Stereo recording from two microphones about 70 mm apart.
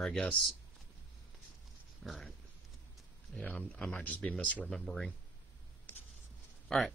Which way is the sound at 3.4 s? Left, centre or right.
Centre.